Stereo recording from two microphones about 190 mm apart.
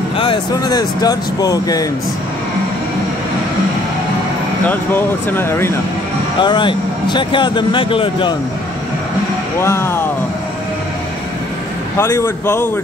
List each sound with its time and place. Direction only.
0.2 s speech: 25° left (ahead or behind)
4.6 s speech: 10° left (ahead or behind)
6.4 s speech: 25° left (ahead or behind)
9.6 s speech: 15° left (ahead or behind)
12.0 s speech: 15° left (ahead or behind)